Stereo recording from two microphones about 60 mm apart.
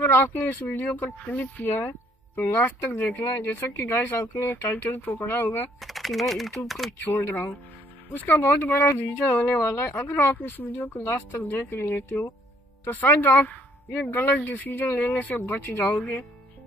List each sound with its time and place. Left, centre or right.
0.1 s speech: left
5.8 s speech: centre
7.1 s speech: left
8.1 s speech: left
11.1 s speech: left